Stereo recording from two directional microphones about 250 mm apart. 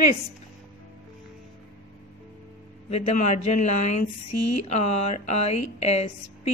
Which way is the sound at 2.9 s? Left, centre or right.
Left.